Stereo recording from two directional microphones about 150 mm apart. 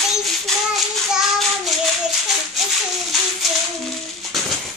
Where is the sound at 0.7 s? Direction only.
Centre (ahead or behind).